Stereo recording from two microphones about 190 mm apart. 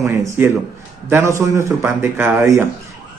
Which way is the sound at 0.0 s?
15° right (ahead or behind).